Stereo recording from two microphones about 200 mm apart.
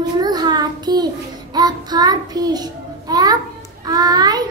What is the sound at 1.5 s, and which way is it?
A child's voice, 20° right (ahead or behind).